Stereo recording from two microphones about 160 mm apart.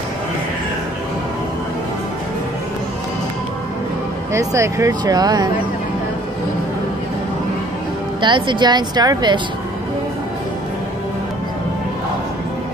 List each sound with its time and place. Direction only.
4.3 s speech: 20° right (ahead or behind)
8.2 s speech: 30° right (ahead or behind)